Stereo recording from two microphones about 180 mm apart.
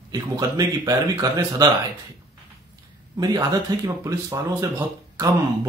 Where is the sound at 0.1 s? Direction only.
20° right (ahead or behind).